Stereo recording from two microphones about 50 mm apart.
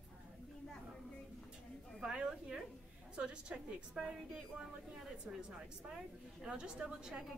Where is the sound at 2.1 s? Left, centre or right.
Centre.